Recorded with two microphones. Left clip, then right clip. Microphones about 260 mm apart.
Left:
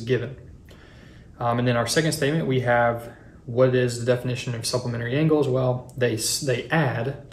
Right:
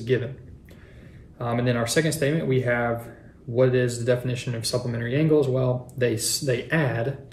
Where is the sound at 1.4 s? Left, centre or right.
Centre.